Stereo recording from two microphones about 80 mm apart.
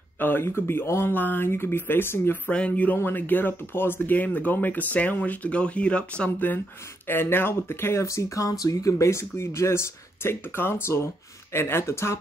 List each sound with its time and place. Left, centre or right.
0.2 s speech: left
2.5 s speech: centre; by 12.2 s left